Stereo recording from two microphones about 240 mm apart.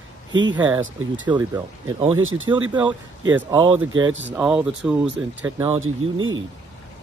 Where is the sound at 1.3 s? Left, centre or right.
Centre.